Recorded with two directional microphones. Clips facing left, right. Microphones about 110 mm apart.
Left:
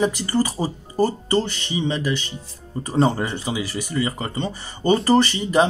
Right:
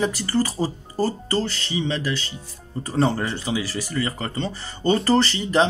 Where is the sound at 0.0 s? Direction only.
15° left (ahead or behind).